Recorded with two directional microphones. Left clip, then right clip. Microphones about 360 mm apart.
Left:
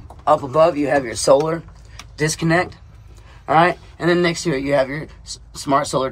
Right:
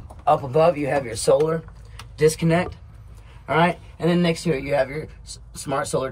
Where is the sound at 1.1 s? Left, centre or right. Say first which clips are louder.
Left 2 dB; left.